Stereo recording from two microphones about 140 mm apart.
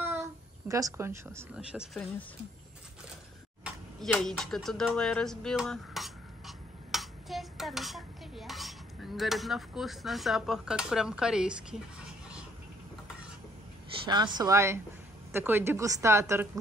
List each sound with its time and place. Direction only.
0.7 s a woman's voice: 25° right (ahead or behind)
1.5 s speech: 5° right (ahead or behind)
3.6 s a sound: centre (ahead or behind)
14.0 s a woman's voice: 30° right (ahead or behind)